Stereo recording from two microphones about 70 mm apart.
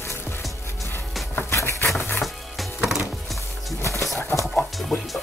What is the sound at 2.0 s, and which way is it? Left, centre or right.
Music, left.